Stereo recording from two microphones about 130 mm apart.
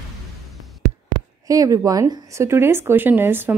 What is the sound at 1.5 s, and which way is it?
A woman's voice, 25° right (ahead or behind).